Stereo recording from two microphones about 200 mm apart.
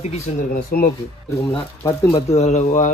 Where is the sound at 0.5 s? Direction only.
45° left (ahead or behind).